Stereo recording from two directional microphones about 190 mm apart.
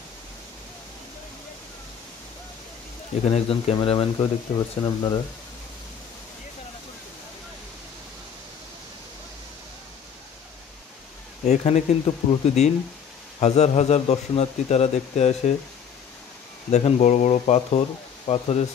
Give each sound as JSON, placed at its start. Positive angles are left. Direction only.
{"t": 3.3, "sound": "speech", "side_deg": 35}
{"t": 11.4, "sound": "a man's voice", "side_deg": 35}
{"t": 16.7, "sound": "a man's voice", "side_deg": 40}